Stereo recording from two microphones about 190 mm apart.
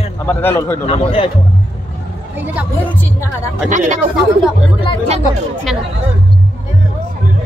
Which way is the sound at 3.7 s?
40° right (ahead or behind).